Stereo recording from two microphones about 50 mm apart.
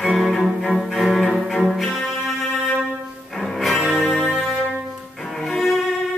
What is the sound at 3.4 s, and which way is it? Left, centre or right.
Music, centre.